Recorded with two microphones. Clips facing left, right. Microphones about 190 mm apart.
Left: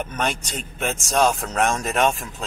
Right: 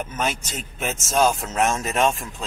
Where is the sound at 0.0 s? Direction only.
5° right (ahead or behind).